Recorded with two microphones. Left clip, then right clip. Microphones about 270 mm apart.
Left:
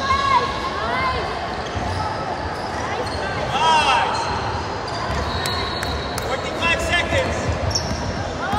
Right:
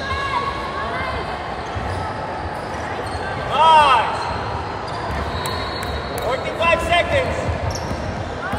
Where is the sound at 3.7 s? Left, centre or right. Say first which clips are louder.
Right 5 dB; centre.